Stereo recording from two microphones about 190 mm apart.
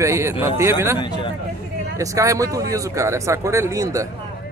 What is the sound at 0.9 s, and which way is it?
Speech, 25° left (ahead or behind).